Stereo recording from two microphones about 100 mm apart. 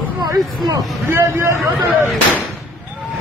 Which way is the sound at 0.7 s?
30° right (ahead or behind).